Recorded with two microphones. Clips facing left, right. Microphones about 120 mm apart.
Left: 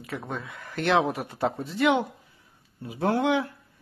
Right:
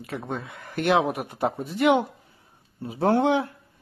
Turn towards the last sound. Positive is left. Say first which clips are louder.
# right 4 dB
turn(degrees=-35)  # may be behind; listen again after turning